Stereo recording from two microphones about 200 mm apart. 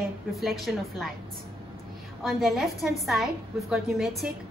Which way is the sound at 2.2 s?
Centre (ahead or behind).